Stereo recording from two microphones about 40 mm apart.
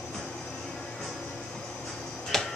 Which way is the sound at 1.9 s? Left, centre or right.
Centre.